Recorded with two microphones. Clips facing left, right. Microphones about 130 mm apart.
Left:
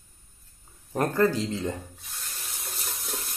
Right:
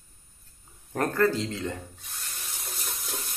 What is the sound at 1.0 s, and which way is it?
Speech, 15° left (ahead or behind).